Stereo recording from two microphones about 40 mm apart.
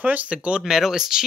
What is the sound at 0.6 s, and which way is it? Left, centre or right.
Speech, centre.